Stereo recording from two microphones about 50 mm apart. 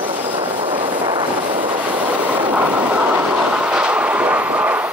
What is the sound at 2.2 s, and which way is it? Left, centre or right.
Train, right.